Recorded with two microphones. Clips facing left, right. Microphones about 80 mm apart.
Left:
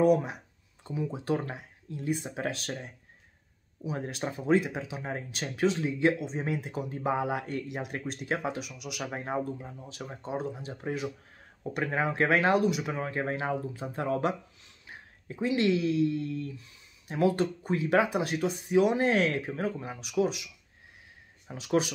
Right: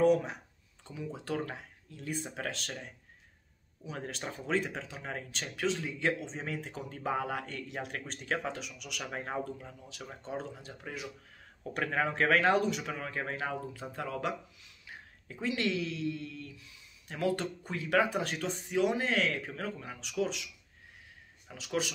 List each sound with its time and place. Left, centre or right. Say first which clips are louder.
0.0 s speech: left 2 dB; centre
4.1 s speech: left 7 dB; centre
7.6 s speech: left 4 dB; centre
9.0 s speech: left 4 dB; left
10.0 s speech: left 5 dB; centre
12.9 s speech: left 5 dB; left
15.3 s speech: left 6 dB; left
21.5 s speech: left 7 dB; left